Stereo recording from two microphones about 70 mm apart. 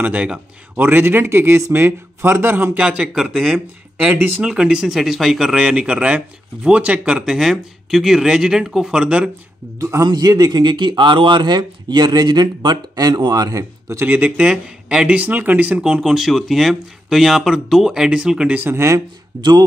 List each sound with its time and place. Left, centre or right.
0.0 s speech: centre
0.8 s speech: right
2.8 s speech: centre
4.0 s speech: right
4.4 s speech: centre
9.8 s a man's voice: right
10.0 s speech: right
14.0 s speech: right
15.8 s speech: centre
18.6 s speech: right
18.9 s speech: right